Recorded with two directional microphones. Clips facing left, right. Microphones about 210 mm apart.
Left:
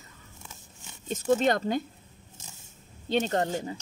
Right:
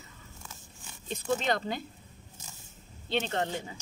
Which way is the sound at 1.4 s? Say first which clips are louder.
Left 6 dB; 45° left (ahead or behind).